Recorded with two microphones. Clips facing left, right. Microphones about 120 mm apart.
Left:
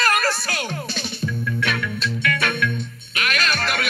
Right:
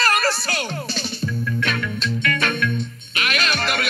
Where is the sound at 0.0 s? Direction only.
Centre (ahead or behind).